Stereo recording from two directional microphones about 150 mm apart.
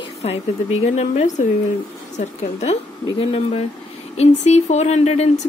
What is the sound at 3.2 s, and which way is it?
A woman's voice, 40° left (ahead or behind).